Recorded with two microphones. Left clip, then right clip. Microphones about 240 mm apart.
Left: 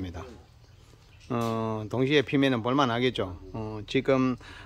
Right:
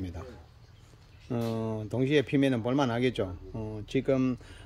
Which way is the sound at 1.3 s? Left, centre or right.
Centre.